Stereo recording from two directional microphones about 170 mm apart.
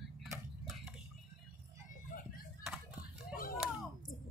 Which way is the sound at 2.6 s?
5° right (ahead or behind).